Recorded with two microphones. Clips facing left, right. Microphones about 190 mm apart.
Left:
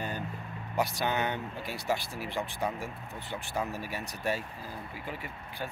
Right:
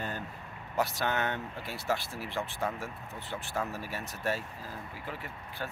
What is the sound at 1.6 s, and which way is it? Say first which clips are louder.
Speech: left 1 dB; centre (ahead or behind).